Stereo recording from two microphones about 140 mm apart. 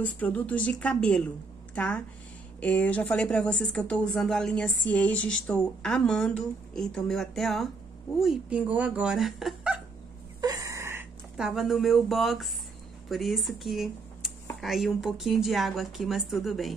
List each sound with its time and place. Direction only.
0.0 s speech: 10° left (ahead or behind)
10.4 s wheeze: 25° right (ahead or behind)
11.3 s speech: 5° right (ahead or behind)